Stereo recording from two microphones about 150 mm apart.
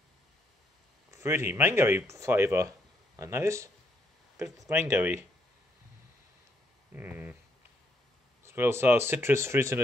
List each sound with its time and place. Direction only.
1.1 s a man's voice: 15° right (ahead or behind)
6.9 s a sound: 10° right (ahead or behind)
8.5 s speech: 15° right (ahead or behind)